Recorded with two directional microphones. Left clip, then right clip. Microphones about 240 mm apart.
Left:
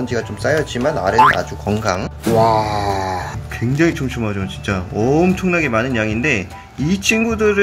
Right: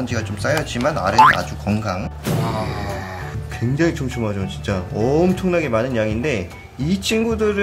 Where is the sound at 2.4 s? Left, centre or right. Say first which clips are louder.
Left 11 dB; left.